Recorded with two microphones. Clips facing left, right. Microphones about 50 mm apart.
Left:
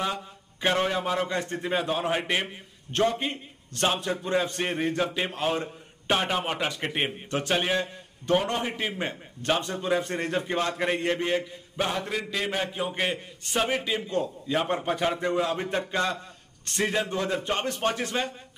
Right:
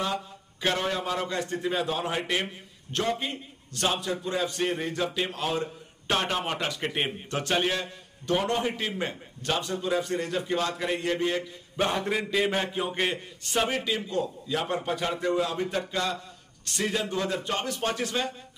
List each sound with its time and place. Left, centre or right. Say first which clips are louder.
0.0 s a man's voice: even; centre
6.0 s a man's voice: left 1 dB; centre
11.7 s a man's voice: right 2 dB; centre; by 18.3 s left